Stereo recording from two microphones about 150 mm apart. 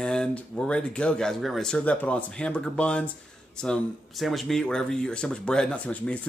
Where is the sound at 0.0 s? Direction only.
5° left (ahead or behind).